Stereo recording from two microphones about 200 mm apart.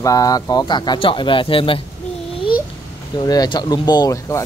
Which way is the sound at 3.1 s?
20° left (ahead or behind).